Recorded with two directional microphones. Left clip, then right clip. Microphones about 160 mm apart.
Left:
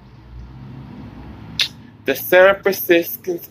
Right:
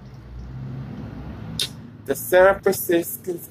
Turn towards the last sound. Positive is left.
turn(degrees=-5)  # may be behind; listen again after turning